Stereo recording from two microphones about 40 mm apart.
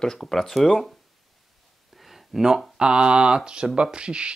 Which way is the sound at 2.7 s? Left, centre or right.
Right.